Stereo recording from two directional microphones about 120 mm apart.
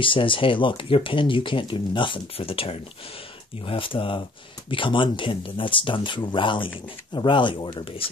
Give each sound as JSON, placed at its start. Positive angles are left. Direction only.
{"t": 0.0, "sound": "speech", "side_deg": 45}